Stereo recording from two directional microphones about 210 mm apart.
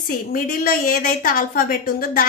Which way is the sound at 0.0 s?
45° left (ahead or behind).